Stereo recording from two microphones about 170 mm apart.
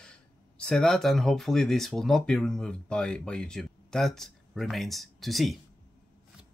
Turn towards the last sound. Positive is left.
turn(degrees=0)  # may be behind; listen again after turning